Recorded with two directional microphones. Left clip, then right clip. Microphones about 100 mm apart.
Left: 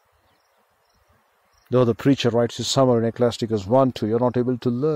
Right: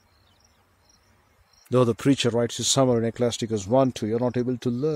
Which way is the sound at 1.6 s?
25° right (ahead or behind).